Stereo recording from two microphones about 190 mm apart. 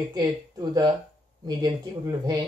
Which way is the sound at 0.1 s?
20° right (ahead or behind).